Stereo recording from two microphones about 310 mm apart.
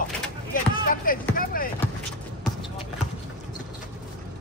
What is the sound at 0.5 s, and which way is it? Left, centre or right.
Basketball bounce, left.